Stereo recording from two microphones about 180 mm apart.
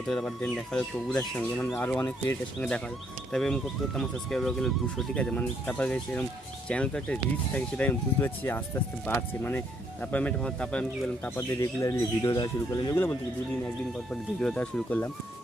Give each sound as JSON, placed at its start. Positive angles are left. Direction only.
{"t": 0.1, "sound": "speech", "side_deg": 5}
{"t": 11.3, "sound": "speech", "side_deg": 15}
{"t": 14.4, "sound": "speech", "side_deg": 5}